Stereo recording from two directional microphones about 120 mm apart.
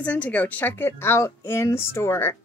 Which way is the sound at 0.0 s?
10° left (ahead or behind).